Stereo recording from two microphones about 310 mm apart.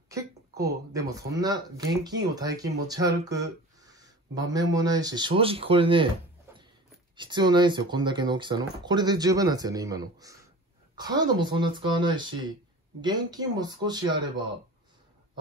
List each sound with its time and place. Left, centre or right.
0.1 s speech: centre
3.8 s a sound: centre
4.6 s speech: centre
7.2 s speech: centre